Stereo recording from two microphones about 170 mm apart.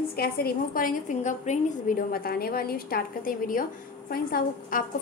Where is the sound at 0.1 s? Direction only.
65° left (ahead or behind).